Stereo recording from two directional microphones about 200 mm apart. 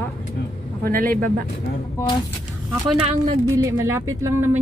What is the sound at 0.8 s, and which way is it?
Speech, 45° right (ahead or behind).